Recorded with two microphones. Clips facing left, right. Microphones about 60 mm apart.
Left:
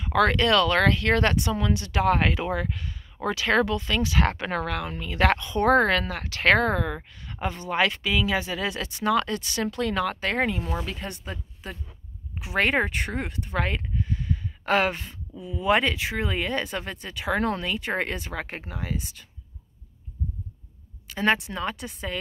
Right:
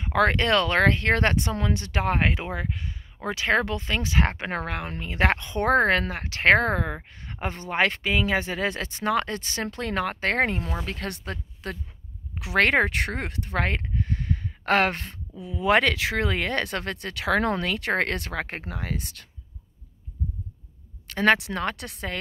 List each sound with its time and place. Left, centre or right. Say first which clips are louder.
0.0 s speech: left 1 dB; right
10.3 s speech: right 1 dB; right
21.1 s speech: right 3 dB; right